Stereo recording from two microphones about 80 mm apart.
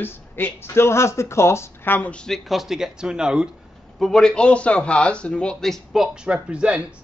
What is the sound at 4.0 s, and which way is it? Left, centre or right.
A man's voice, centre.